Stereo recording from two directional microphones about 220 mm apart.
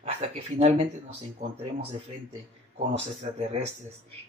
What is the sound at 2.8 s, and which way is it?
Speech, 30° right (ahead or behind).